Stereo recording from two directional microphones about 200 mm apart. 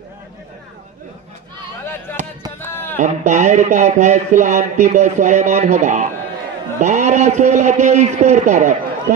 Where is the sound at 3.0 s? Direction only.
35° right (ahead or behind).